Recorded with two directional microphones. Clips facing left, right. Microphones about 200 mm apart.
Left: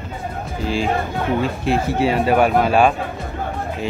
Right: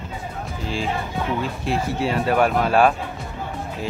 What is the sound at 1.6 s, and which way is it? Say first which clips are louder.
Speech: left 4 dB; centre (ahead or behind).